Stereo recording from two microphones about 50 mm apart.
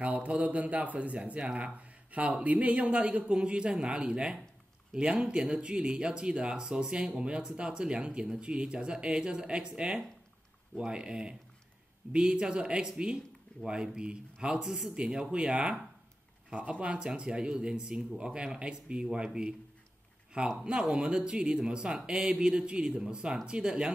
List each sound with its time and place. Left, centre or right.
0.0 s speech: right
16.4 s speech: right